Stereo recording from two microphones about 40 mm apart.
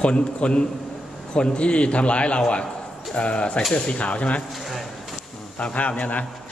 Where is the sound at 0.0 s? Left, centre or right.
Left.